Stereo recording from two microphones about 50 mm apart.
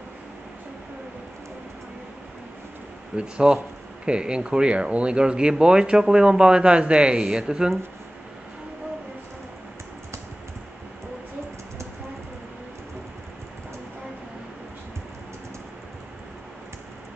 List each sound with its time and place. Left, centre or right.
3.2 s speech: centre